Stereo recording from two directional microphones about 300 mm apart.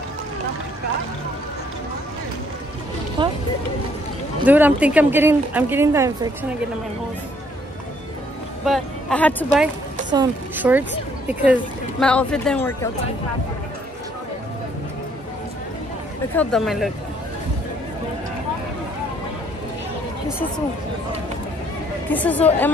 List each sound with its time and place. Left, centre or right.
3.2 s speech: centre
4.5 s speech: centre
8.6 s speech: centre
10.1 s speech: centre
16.3 s speech: centre
22.1 s speech: centre